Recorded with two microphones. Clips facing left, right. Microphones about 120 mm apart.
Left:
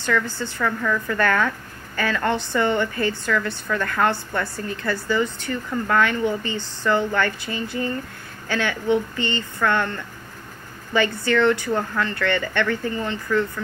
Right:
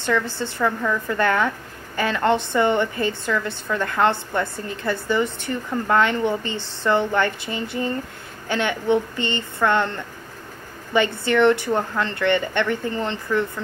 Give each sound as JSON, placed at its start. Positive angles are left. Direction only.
{"t": 0.0, "sound": "a woman's voice", "side_deg": -25}